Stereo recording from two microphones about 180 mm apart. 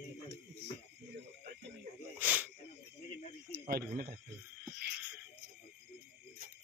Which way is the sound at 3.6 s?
55° right (ahead or behind).